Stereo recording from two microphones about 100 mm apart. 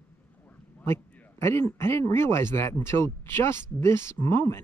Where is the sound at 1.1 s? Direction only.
20° left (ahead or behind).